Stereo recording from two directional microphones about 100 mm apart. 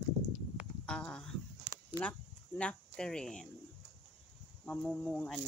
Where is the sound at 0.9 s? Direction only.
10° left (ahead or behind).